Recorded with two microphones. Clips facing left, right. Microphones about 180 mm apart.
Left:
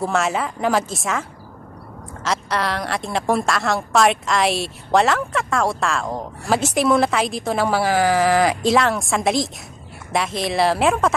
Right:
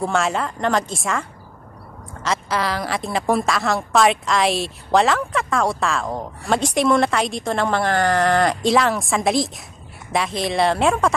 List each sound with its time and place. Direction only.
0.0 s a woman's voice: centre (ahead or behind)
2.2 s a woman's voice: centre (ahead or behind)